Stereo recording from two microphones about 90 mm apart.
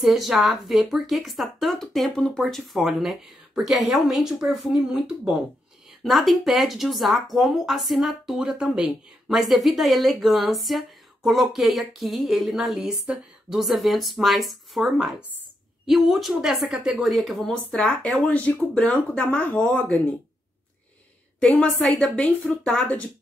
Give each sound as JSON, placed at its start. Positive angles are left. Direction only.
{"t": 0.0, "sound": "speech", "side_deg": 0}
{"t": 13.0, "sound": "speech", "side_deg": -15}
{"t": 13.6, "sound": "speech", "side_deg": 0}
{"t": 21.4, "sound": "speech", "side_deg": 10}